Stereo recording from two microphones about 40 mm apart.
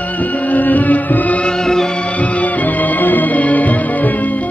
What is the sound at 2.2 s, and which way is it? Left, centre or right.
Music, left.